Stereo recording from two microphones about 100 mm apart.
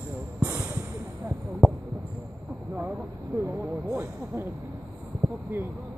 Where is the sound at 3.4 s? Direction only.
25° right (ahead or behind).